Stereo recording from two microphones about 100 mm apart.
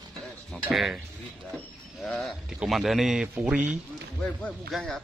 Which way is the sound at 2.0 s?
Centre (ahead or behind).